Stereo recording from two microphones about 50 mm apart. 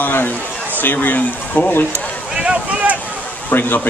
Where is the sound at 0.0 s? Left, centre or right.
Left.